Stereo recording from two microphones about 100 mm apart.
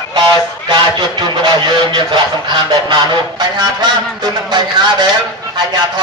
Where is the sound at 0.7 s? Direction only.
45° right (ahead or behind).